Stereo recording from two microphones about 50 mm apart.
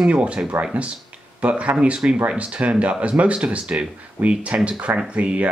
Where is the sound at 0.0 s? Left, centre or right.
Right.